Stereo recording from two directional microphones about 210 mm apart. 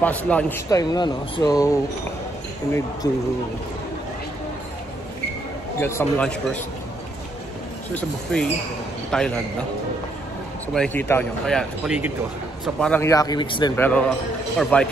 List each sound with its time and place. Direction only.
0.0 s speech: 10° left (ahead or behind)
0.7 s speech: 20° left (ahead or behind)
3.0 s speech: 15° left (ahead or behind)
5.8 s speech: 10° left (ahead or behind)
7.9 s speech: 5° left (ahead or behind)
10.7 s speech: 5° left (ahead or behind)
13.0 s speech: 15° left (ahead or behind)
13.7 s speech: 5° left (ahead or behind)